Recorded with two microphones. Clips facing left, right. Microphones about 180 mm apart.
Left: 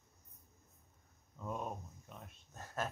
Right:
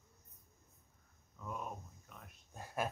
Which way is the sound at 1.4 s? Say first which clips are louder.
Left 3 dB; 25° left (ahead or behind).